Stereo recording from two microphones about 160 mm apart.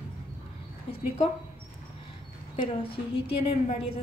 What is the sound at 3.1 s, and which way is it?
Speech, 40° left (ahead or behind).